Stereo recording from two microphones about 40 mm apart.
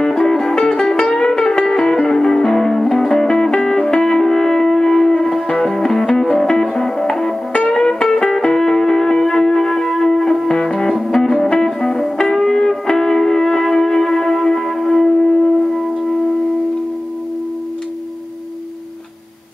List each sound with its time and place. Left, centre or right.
0.0 s music: centre